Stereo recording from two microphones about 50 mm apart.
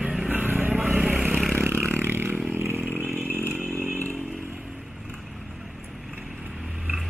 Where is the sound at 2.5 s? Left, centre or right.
Right.